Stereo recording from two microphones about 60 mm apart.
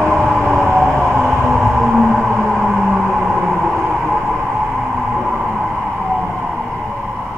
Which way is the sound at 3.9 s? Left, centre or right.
Centre.